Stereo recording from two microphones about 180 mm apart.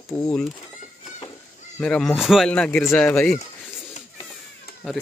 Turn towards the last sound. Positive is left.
turn(degrees=55)  # may be behind; listen again after turning